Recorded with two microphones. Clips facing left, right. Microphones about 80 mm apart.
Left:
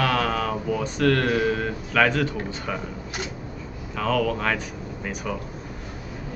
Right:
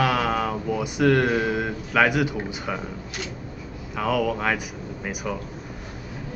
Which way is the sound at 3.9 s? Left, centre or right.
Centre.